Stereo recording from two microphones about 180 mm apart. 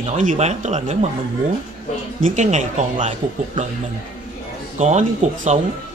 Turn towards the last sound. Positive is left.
turn(degrees=-40)  # may be behind; listen again after turning